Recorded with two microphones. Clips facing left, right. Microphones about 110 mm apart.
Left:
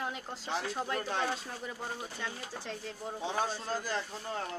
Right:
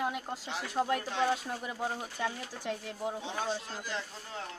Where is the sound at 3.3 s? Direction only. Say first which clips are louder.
Left 2 dB; 40° left (ahead or behind).